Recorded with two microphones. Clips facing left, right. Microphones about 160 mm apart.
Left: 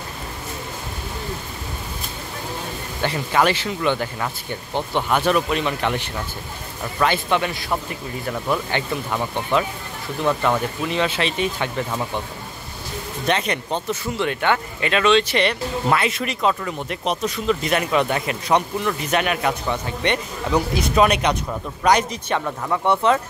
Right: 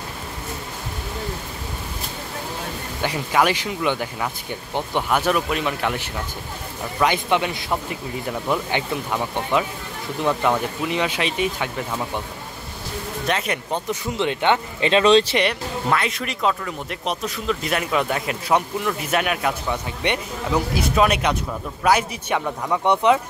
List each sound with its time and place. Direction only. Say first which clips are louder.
3.0 s speech: left 1 dB; 10° right (ahead or behind)
13.3 s speech: left 2 dB; 5° right (ahead or behind); by 15.3 s 30° right (ahead or behind)
15.9 s speech: left 1 dB; 5° left (ahead or behind); by 23.2 s 15° right (ahead or behind)